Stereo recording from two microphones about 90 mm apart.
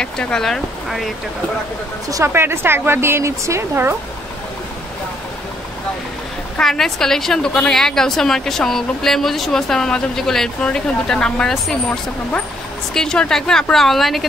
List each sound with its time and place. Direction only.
0.0 s speech: 10° left (ahead or behind)
2.0 s speech: 40° right (ahead or behind)
2.3 s speech: 25° right (ahead or behind)
6.5 s a woman's voice: 5° left (ahead or behind)
12.9 s a woman's voice: 5° left (ahead or behind)